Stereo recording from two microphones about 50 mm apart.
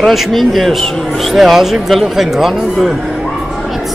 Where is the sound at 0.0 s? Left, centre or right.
Centre.